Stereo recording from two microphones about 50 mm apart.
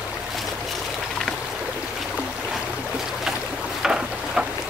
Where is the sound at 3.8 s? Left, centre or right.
Centre.